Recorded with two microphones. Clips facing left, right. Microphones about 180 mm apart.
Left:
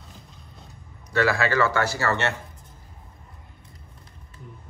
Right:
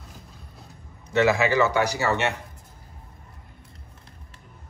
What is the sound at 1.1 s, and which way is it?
A man's voice, 20° right (ahead or behind).